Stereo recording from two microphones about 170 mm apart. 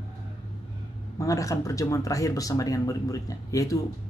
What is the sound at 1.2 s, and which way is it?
Speech, 20° left (ahead or behind).